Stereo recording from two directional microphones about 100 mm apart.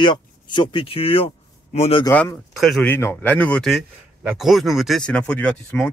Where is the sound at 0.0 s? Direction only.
50° left (ahead or behind); by 2.0 s 80° left.